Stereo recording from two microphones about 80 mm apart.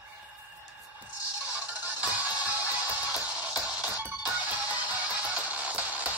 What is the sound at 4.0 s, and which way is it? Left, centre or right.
Music, centre.